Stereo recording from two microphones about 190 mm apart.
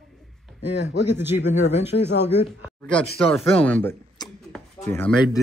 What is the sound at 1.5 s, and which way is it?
Speech, 35° left (ahead or behind).